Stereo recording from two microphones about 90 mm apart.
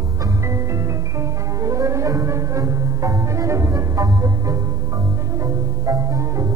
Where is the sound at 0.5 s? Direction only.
35° right (ahead or behind).